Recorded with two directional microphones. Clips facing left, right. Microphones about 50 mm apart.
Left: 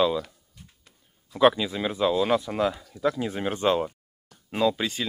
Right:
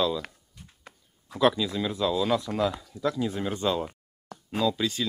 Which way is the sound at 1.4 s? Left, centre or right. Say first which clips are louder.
Left 3 dB; left.